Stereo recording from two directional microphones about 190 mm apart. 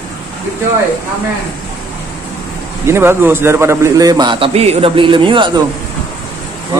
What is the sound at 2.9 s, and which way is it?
A man's voice, 10° right (ahead or behind).